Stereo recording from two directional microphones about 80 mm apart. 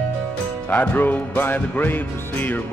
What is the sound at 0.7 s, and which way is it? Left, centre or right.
Music, left.